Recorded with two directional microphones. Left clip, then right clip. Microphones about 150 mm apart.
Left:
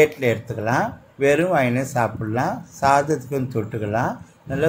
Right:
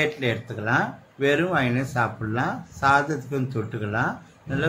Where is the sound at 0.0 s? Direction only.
30° left (ahead or behind).